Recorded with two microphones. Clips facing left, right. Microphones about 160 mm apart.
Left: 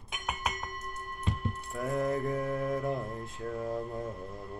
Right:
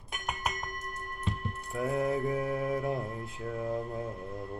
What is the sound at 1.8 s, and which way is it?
Mantra, 10° right (ahead or behind).